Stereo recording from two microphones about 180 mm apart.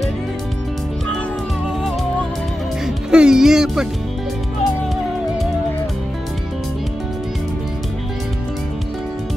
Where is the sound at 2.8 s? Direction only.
5° right (ahead or behind).